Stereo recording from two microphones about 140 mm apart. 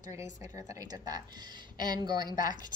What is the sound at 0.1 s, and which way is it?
A woman's voice, 20° right (ahead or behind).